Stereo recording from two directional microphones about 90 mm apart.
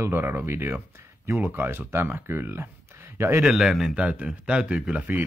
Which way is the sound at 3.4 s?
5° right (ahead or behind).